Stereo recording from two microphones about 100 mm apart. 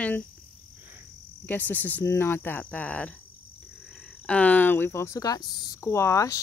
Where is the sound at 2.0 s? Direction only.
30° left (ahead or behind).